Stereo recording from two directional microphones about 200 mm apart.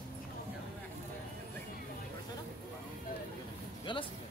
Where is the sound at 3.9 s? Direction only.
25° left (ahead or behind).